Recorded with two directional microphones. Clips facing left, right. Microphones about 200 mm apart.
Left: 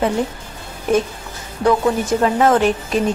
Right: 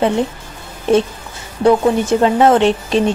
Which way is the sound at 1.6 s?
25° right (ahead or behind).